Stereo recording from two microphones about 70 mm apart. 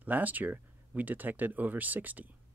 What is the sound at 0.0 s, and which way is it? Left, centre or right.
Speech, right.